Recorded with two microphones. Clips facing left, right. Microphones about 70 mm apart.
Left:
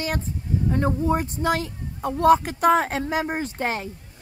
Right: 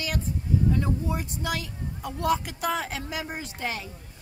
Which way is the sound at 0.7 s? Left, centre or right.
Left.